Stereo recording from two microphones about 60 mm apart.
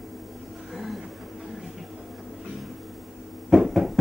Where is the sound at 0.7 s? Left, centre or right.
Centre.